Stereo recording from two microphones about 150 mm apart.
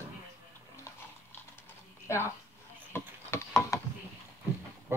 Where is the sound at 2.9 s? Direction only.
15° left (ahead or behind).